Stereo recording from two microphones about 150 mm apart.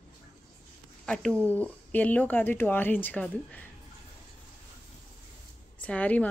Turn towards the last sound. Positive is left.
turn(degrees=10)  # may be behind; listen again after turning